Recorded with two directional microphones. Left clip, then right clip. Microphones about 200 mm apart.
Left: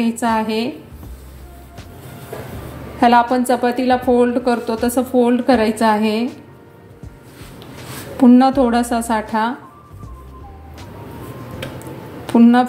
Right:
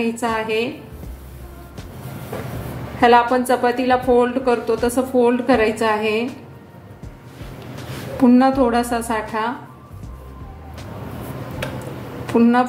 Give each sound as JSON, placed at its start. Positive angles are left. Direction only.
{"t": 0.0, "sound": "a woman's voice", "side_deg": 35}
{"t": 3.0, "sound": "a woman's voice", "side_deg": 30}
{"t": 8.2, "sound": "a woman's voice", "side_deg": 35}
{"t": 12.3, "sound": "speech", "side_deg": 35}